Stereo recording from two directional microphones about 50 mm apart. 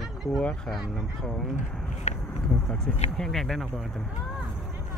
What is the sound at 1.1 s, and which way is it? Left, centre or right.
Speech, centre.